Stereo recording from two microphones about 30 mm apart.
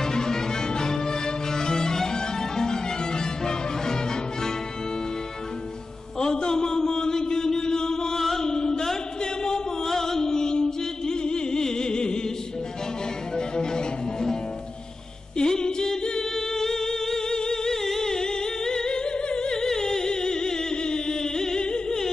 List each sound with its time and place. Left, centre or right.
0.0 s music: left
6.1 s a sound: left
8.3 s music: left
9.2 s chant: left
9.8 s music: centre
13.4 s music: left
15.3 s singing: left
17.4 s humming: left
17.8 s music: centre
21.5 s a sound: left